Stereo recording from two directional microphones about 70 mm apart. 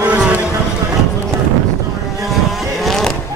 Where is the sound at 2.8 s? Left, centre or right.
Centre.